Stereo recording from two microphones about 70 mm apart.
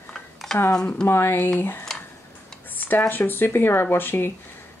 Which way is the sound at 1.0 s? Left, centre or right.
Left.